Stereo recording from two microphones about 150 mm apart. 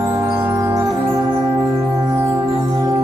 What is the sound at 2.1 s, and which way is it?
Music, 15° right (ahead or behind).